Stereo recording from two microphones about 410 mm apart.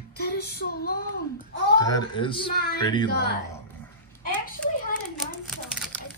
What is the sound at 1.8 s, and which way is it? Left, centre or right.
Speech, centre.